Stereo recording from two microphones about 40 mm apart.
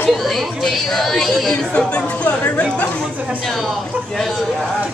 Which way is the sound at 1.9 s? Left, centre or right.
Left.